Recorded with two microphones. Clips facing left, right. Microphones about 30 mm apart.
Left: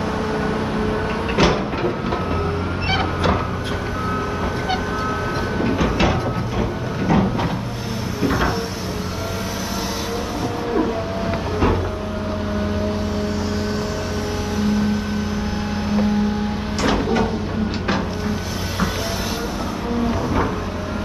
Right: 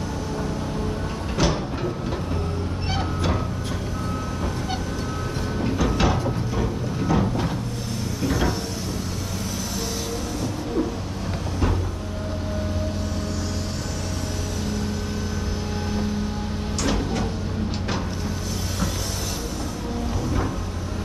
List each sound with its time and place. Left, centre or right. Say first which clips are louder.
1.3 s a sound: left 6 dB; left
5.6 s train: left 3 dB; left
6.6 s a sound: left 3 dB; left
8.2 s cupboard open or close: left 4 dB; left
14.6 s vehicle: left 10 dB; centre
16.8 s music: left 7 dB; left